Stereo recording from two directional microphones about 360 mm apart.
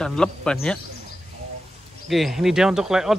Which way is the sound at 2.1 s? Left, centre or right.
Centre.